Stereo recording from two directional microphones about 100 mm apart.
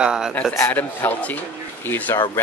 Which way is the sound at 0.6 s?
20° left (ahead or behind).